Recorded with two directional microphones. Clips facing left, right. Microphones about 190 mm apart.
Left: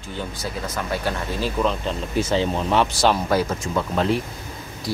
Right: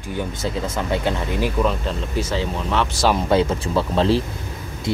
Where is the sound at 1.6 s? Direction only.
5° right (ahead or behind).